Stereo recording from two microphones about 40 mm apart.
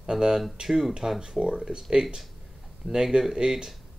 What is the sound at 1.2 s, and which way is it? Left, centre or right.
Speech, centre.